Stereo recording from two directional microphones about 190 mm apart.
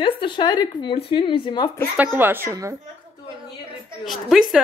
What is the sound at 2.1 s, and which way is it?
Speech, 10° right (ahead or behind).